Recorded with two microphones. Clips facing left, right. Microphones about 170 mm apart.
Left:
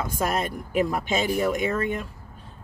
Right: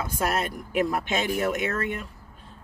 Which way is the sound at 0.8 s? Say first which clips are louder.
Left 1 dB; centre (ahead or behind).